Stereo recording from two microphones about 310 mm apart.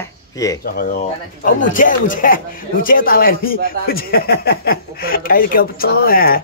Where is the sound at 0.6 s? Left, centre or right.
Left.